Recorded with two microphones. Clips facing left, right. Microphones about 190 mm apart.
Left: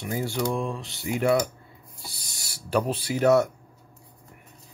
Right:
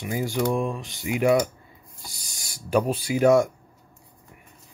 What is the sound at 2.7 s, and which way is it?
Speech, 10° right (ahead or behind).